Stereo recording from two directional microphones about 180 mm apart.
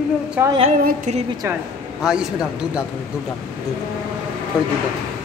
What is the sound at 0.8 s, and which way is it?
Speech, 45° right (ahead or behind).